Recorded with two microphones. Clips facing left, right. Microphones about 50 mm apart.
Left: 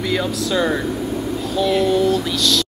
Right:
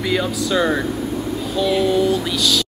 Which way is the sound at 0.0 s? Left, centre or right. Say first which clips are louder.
Right 1 dB; centre.